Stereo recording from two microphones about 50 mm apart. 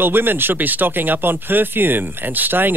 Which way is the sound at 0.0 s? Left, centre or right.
Right.